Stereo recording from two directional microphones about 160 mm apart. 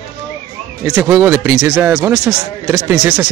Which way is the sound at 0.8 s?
15° right (ahead or behind).